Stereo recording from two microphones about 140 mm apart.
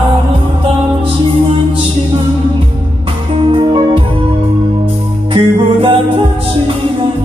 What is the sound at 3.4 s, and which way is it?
Music, 40° right (ahead or behind).